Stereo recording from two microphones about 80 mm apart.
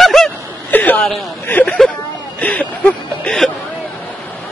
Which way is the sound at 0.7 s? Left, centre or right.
Left.